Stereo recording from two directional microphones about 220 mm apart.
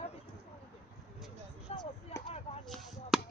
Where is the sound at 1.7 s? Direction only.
25° left (ahead or behind).